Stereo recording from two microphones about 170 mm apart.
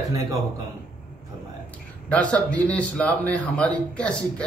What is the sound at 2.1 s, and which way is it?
Speech, 10° left (ahead or behind).